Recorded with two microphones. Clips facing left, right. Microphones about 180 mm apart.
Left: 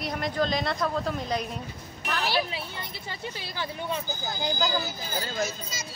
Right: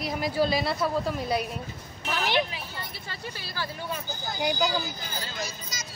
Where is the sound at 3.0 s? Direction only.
20° left (ahead or behind).